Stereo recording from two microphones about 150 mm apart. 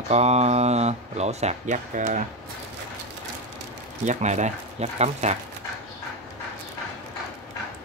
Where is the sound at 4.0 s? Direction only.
50° right (ahead or behind).